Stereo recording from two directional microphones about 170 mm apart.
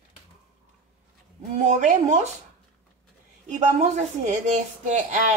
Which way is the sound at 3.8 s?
40° right (ahead or behind).